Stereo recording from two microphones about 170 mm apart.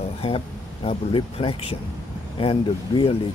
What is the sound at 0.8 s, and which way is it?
Speech, 35° left (ahead or behind).